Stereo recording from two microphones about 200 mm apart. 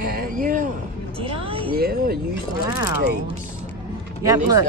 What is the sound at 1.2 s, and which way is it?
Speech, 30° right (ahead or behind).